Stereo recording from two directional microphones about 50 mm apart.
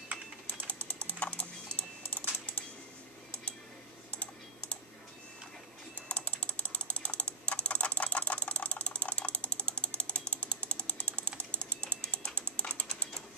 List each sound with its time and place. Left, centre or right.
0.5 s typing: left
4.1 s typing: left
5.9 s ratchet: left
12.4 s a sound: left